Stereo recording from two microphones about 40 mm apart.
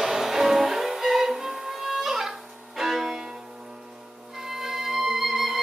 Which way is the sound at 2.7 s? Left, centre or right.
Centre.